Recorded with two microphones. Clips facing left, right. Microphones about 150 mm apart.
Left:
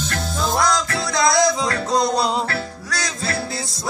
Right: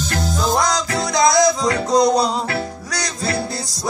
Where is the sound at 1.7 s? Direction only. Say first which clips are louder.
Right 5 dB; 20° right (ahead or behind).